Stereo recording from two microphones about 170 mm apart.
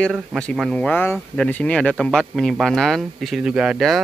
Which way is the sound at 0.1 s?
Centre (ahead or behind).